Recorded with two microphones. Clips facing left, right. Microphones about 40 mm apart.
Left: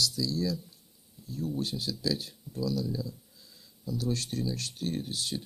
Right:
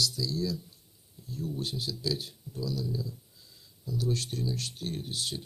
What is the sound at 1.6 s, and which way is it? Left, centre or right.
Speech, right.